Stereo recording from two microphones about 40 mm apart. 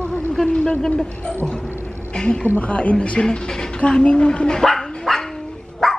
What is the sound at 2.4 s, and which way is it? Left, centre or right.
A woman's voice, left.